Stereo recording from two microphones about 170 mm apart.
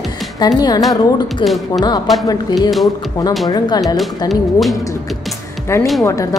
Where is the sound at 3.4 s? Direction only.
25° left (ahead or behind).